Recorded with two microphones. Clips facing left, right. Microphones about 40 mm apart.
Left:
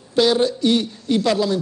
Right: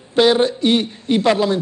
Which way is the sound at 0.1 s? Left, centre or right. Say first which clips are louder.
Right 3 dB; right.